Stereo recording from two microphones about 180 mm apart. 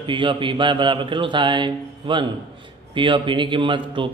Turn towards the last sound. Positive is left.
turn(degrees=-25)  # may be behind; listen again after turning